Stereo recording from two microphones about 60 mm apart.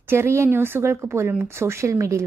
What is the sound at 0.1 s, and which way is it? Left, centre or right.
A woman's voice, right.